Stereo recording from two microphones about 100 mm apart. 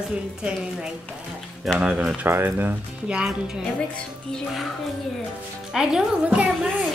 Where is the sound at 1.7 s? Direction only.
10° right (ahead or behind).